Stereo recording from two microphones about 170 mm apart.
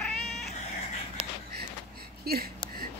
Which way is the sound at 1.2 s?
35° right (ahead or behind).